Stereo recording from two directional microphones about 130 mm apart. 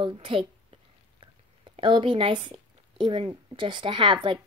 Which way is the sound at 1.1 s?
40° right (ahead or behind).